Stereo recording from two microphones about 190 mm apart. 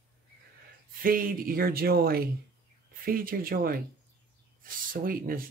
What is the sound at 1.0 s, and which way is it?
Speech, 50° right (ahead or behind).